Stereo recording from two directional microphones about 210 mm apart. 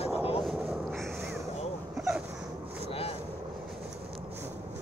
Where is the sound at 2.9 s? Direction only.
25° left (ahead or behind).